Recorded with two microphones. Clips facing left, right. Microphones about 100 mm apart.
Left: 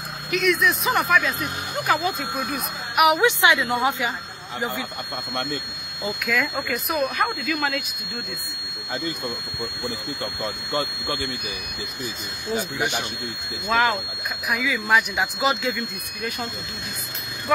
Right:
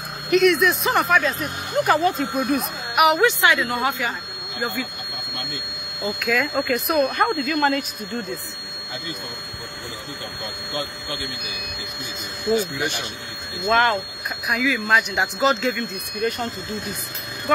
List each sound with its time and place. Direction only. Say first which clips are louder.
0.3 s speech: right 5 dB; centre (ahead or behind)
3.2 s a woman's voice: right 1 dB; 15° left (ahead or behind)
6.0 s speech: right 2 dB; centre (ahead or behind)
13.7 s speech: right 3 dB; centre (ahead or behind)